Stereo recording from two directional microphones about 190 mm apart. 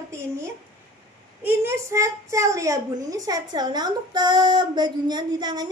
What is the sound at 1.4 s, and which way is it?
A woman's voice, 10° right (ahead or behind).